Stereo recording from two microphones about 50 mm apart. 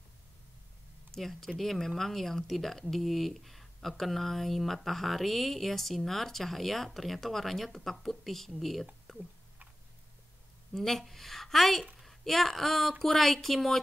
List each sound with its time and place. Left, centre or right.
1.1 s speech: centre
10.7 s speech: centre